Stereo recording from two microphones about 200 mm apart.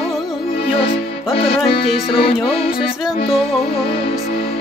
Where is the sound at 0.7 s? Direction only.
30° left (ahead or behind).